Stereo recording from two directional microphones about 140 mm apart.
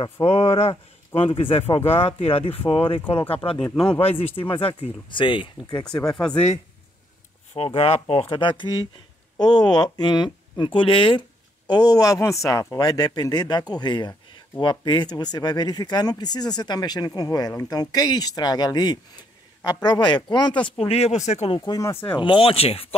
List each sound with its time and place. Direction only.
0.2 s speech: 25° left (ahead or behind)
0.6 s speech: 45° left (ahead or behind)
3.6 s speech: 5° left (ahead or behind)
4.0 s speech: 40° left (ahead or behind)
6.0 s speech: 5° left (ahead or behind)
6.3 s speech: 50° left (ahead or behind)
21.5 s speech: 25° left (ahead or behind)
22.2 s speech: 40° left (ahead or behind)